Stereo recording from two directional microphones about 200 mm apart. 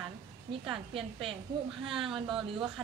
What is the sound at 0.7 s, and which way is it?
Speech, 25° right (ahead or behind).